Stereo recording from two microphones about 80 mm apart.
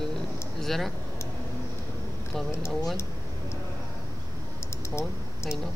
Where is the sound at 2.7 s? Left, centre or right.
Centre.